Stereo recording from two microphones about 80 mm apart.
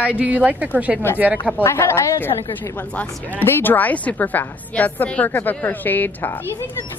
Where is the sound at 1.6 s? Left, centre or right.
Left.